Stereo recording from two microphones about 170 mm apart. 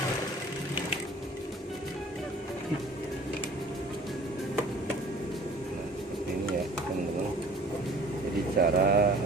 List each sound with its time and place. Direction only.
8.5 s speech: 65° right (ahead or behind)